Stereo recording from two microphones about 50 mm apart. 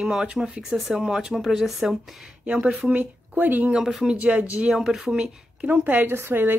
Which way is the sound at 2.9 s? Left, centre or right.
Right.